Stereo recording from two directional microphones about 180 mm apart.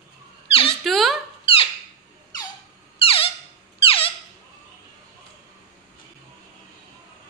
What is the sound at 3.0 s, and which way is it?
Squeak, 30° left (ahead or behind).